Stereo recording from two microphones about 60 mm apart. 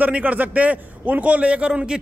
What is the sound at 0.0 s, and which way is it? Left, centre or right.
A man's voice, right.